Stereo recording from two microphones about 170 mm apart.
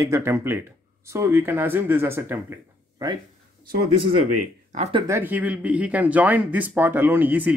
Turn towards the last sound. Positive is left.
turn(degrees=-10)  # may be behind; listen again after turning